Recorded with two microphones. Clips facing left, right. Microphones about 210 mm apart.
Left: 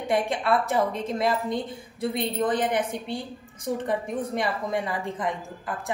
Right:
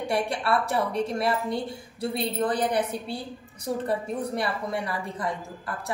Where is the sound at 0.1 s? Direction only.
20° left (ahead or behind).